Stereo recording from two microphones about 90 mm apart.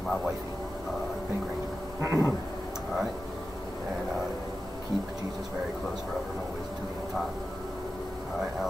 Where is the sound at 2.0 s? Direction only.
30° right (ahead or behind).